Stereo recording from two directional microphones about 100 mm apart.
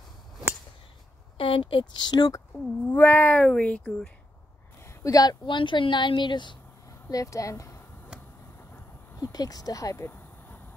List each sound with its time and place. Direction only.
1.4 s a woman's voice: 65° left (ahead or behind); by 2.4 s 40° left (ahead or behind)
2.9 s speech: 20° left (ahead or behind)
4.8 s a sound: 35° left (ahead or behind)
5.5 s a woman's voice: 55° left (ahead or behind)
7.1 s speech: 35° left (ahead or behind)
9.1 s speech: 35° left (ahead or behind); by 10.6 s 20° left (ahead or behind)